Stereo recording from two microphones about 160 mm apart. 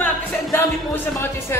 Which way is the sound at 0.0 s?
15° left (ahead or behind).